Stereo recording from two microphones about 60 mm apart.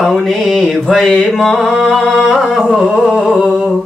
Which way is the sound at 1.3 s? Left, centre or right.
Centre.